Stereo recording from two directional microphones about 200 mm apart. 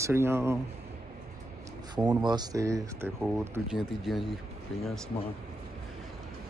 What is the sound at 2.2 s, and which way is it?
Speech, 20° right (ahead or behind).